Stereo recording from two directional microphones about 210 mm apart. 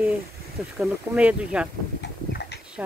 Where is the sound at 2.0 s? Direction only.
55° left (ahead or behind).